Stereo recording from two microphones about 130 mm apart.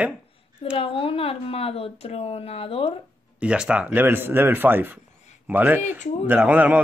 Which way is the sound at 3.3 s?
5° right (ahead or behind).